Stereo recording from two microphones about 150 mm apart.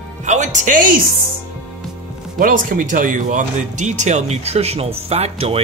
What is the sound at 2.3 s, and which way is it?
Speech, 65° right (ahead or behind).